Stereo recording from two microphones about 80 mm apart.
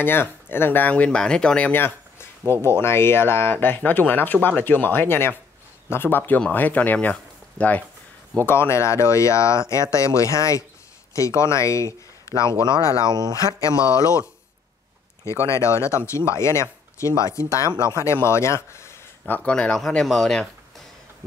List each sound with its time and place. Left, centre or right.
0.0 s speech: left; by 1.7 s centre
1.7 s speech: left
8.5 s speech: left
13.0 s speech: right
13.6 s speech: left
15.2 s speech: left
19.2 s speech: left
19.5 s speech: centre